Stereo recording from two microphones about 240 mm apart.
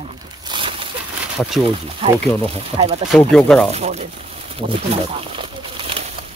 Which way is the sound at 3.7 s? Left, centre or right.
Right.